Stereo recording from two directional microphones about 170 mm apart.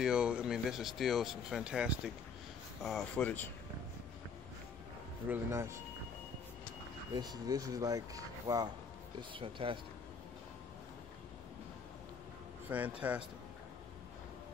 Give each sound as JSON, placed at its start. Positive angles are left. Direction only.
{"t": 0.0, "sound": "speech", "side_deg": -5}
{"t": 5.3, "sound": "speech", "side_deg": -15}
{"t": 7.2, "sound": "speech", "side_deg": -20}
{"t": 9.3, "sound": "speech", "side_deg": -30}
{"t": 12.6, "sound": "a man's voice", "side_deg": -10}